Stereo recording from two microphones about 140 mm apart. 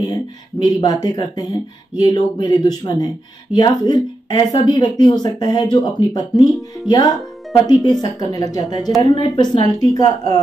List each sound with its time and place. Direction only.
0.0 s speech: 25° left (ahead or behind)